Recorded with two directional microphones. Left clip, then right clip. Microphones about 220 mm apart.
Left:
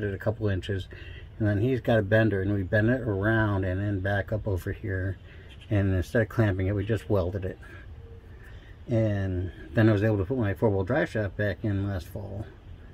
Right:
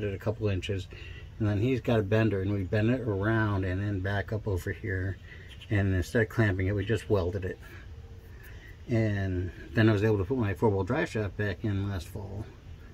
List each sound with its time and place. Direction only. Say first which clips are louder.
0.0 s a man's voice: left 2 dB; 20° left (ahead or behind)
8.8 s a man's voice: left 3 dB; 15° left (ahead or behind)